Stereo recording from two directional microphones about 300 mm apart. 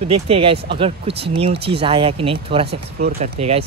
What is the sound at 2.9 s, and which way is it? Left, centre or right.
Speech, right.